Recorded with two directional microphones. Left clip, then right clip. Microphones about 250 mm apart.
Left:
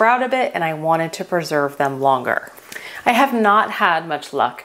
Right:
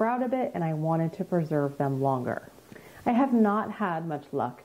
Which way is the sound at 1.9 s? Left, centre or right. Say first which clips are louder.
Left 12 dB; left.